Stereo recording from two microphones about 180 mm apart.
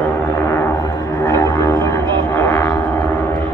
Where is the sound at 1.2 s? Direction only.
15° left (ahead or behind).